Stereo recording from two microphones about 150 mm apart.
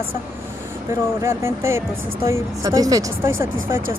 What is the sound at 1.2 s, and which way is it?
Speech, 15° right (ahead or behind).